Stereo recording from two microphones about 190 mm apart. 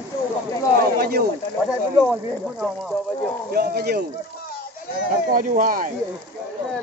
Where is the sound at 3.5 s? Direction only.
55° right (ahead or behind).